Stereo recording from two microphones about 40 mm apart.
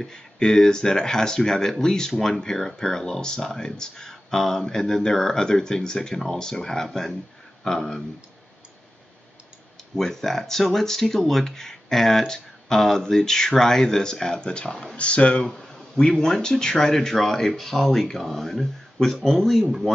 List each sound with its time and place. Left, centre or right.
0.0 s speech: centre
9.9 s speech: centre; by 15.4 s left
15.4 s speech: centre